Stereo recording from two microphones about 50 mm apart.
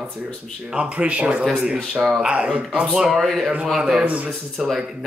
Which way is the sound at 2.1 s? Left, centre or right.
Right.